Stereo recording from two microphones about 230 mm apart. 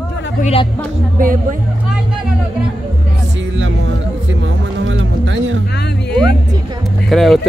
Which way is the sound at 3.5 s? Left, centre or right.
Right.